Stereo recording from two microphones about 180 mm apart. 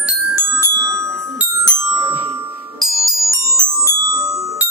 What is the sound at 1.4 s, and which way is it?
Music, 15° right (ahead or behind).